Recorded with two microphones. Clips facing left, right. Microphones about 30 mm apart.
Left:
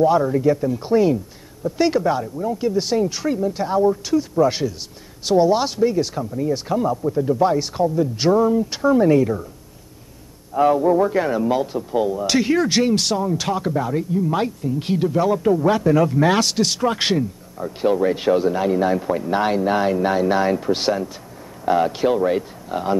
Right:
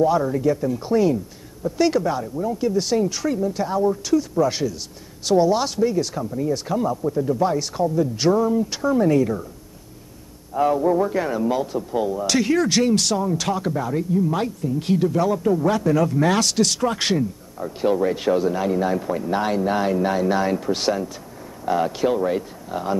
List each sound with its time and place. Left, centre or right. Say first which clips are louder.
0.0 s speech: left 2 dB; centre
2.2 s speech: left 1 dB; centre
10.5 s a man's voice: left 3 dB; centre
17.2 s speech: even; centre